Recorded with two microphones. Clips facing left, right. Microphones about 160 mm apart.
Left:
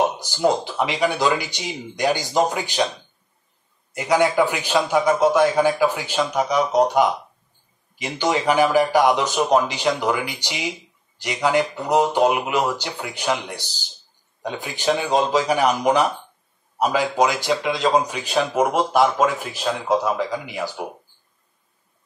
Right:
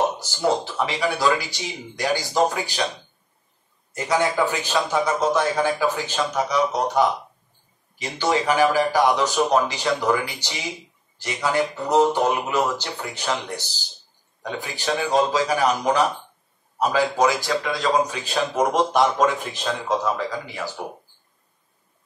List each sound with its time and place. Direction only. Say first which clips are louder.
0.2 s speech: left 2 dB; 15° left (ahead or behind)
3.9 s speech: left 3 dB; 10° left (ahead or behind)